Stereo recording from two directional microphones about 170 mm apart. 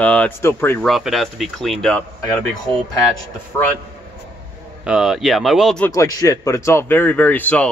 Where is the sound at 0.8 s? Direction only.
Centre (ahead or behind).